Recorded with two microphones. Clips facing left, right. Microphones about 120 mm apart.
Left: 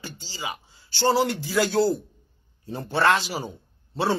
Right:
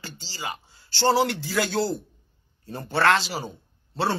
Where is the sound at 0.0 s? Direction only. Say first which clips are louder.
Left 1 dB; 15° left (ahead or behind).